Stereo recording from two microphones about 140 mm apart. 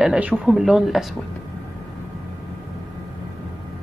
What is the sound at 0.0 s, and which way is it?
Speech, 5° right (ahead or behind).